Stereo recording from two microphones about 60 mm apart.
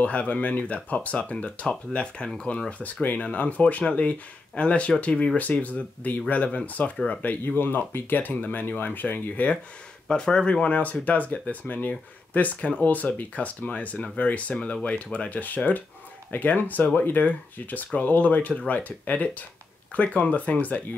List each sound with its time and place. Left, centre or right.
0.0 s speech: left
2.8 s speech: left
10.0 s speech: centre